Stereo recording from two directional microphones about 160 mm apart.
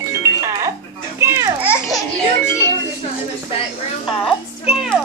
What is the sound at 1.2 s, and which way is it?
Speech, 15° right (ahead or behind).